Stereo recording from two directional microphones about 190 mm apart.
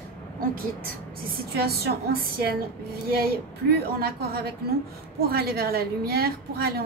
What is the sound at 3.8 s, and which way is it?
A woman's voice, 55° right (ahead or behind).